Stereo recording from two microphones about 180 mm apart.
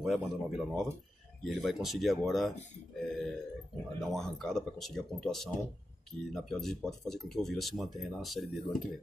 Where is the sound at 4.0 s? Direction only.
Centre (ahead or behind).